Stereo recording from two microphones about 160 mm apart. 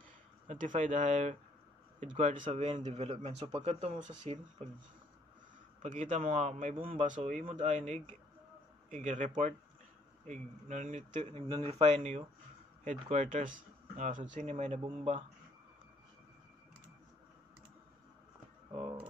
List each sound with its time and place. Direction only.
0.5 s speech: 50° right (ahead or behind)
5.8 s speech: 50° right (ahead or behind)
7.2 s speech: 40° right (ahead or behind)
11.4 s speech: 25° right (ahead or behind)
11.8 s speech: 40° right (ahead or behind)
18.7 s a sound: 40° right (ahead or behind)